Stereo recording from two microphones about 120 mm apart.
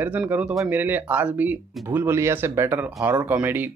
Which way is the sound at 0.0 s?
15° right (ahead or behind).